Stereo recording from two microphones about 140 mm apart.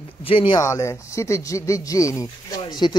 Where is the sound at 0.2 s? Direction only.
40° left (ahead or behind).